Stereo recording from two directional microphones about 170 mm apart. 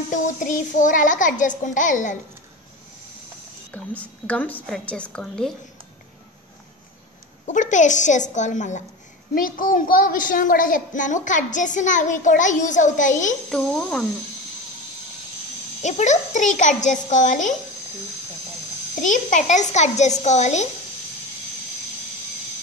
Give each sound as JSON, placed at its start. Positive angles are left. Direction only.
{"t": 0.1, "sound": "a woman's voice", "side_deg": 50}
{"t": 3.7, "sound": "a woman's voice", "side_deg": 10}
{"t": 7.4, "sound": "a woman's voice", "side_deg": 45}
{"t": 9.3, "sound": "a woman's voice", "side_deg": 55}
{"t": 13.5, "sound": "speech", "side_deg": 5}
{"t": 15.8, "sound": "a woman's voice", "side_deg": 45}
{"t": 18.9, "sound": "a woman's voice", "side_deg": 50}